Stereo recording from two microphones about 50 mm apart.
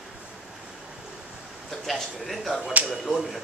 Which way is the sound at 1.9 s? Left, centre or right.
Centre.